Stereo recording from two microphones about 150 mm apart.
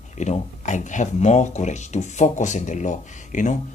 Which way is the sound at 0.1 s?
50° left (ahead or behind).